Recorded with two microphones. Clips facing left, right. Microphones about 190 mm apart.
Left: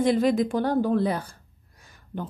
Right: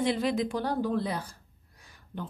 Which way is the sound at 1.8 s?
45° left (ahead or behind).